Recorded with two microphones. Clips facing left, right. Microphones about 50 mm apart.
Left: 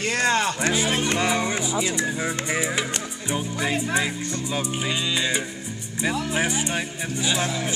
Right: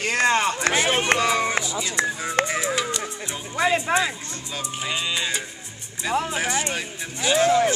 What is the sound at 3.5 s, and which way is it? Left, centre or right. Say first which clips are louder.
Speech: right 6 dB; right.